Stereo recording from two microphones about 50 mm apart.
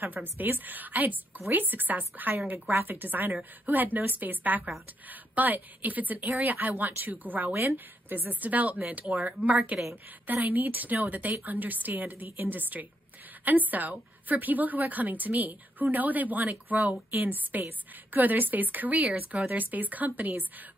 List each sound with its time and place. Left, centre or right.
0.0 s a woman's voice: right
7.5 s a woman's voice: right